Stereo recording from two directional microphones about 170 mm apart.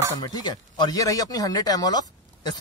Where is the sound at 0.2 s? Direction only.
25° left (ahead or behind).